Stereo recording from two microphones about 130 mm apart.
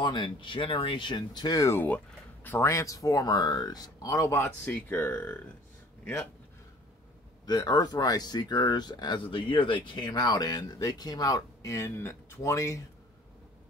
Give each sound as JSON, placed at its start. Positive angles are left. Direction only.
{"t": 0.0, "sound": "speech", "side_deg": 35}
{"t": 7.4, "sound": "speech", "side_deg": 30}